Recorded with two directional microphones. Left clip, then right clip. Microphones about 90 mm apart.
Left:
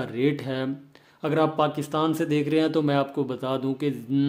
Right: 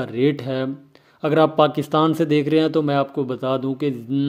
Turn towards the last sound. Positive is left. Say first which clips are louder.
# right 5 dB
turn(degrees=-30)  # may be behind; listen again after turning